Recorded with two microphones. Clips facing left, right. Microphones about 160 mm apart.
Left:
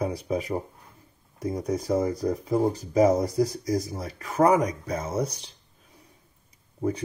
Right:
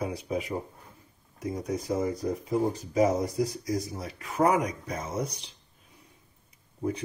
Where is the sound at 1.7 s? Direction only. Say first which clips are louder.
Left 4 dB; 35° left (ahead or behind).